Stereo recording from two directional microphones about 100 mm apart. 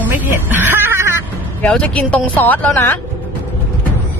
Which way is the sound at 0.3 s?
20° right (ahead or behind).